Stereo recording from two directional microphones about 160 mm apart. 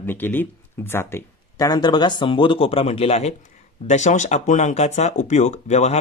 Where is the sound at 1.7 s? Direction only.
25° left (ahead or behind).